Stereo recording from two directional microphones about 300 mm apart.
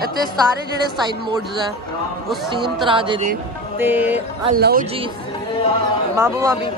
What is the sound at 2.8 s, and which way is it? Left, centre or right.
Speech, centre.